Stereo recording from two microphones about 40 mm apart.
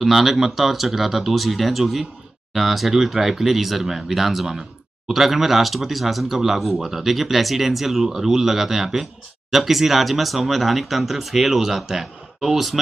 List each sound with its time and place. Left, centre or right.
0.0 s speech: centre